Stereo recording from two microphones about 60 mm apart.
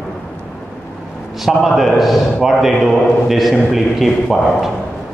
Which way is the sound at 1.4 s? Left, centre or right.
Centre.